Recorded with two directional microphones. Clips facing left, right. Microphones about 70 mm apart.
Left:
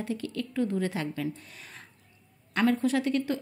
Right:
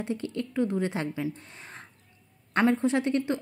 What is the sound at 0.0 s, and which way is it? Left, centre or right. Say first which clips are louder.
Speech: right 1 dB; right.